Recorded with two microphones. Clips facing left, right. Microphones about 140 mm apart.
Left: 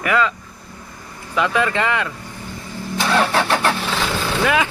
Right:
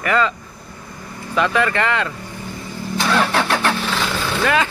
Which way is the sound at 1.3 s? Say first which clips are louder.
Right 1 dB; 15° left (ahead or behind).